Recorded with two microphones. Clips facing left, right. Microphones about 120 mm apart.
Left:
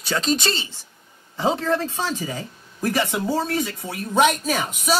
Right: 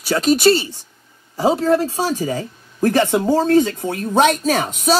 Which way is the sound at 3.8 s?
60° right (ahead or behind).